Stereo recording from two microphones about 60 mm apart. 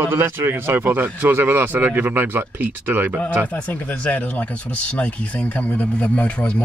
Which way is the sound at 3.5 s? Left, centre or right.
Left.